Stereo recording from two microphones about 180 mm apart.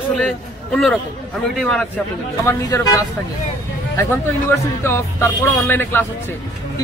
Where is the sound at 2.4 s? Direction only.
20° left (ahead or behind).